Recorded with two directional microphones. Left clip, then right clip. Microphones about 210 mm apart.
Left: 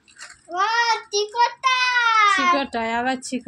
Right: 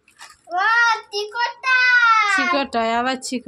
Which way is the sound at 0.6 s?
15° right (ahead or behind).